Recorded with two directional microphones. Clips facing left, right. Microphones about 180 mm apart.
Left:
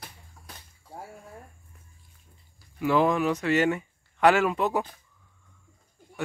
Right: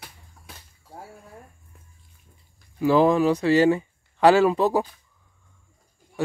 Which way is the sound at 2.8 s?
35° right (ahead or behind).